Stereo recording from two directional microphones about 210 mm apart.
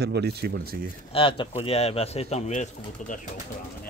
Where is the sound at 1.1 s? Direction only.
25° left (ahead or behind).